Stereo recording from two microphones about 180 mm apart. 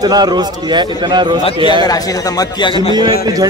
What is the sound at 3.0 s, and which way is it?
Speech, 20° right (ahead or behind).